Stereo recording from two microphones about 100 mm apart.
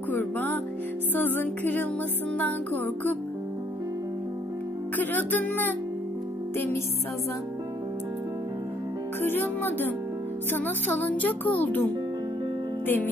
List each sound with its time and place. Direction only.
0.1 s music: 20° left (ahead or behind)
4.9 s music: 15° left (ahead or behind)
9.2 s music: 20° left (ahead or behind)